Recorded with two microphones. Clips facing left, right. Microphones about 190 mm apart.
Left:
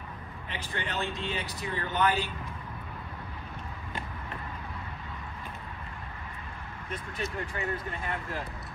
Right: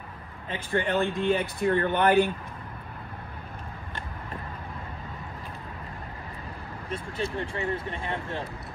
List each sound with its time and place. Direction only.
0.5 s speech: 55° right (ahead or behind)
6.9 s speech: 30° right (ahead or behind)